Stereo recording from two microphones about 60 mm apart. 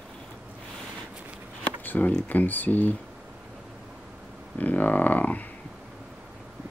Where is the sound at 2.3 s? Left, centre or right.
Left.